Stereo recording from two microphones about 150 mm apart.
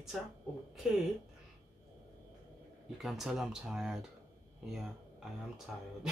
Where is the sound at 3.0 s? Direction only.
Centre (ahead or behind).